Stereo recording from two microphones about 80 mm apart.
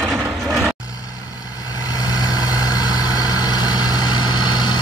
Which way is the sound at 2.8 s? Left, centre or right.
Left.